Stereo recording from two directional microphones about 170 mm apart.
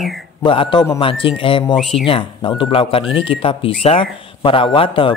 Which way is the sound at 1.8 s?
Centre (ahead or behind).